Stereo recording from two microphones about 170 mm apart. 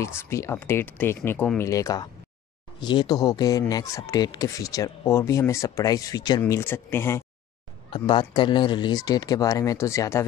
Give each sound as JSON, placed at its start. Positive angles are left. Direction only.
{"t": 0.0, "sound": "speech", "side_deg": 15}
{"t": 6.4, "sound": "speech", "side_deg": 15}
{"t": 7.9, "sound": "speech", "side_deg": 25}